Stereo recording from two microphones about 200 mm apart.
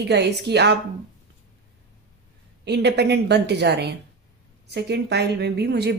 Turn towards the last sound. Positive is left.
turn(degrees=-55)  # may be behind; listen again after turning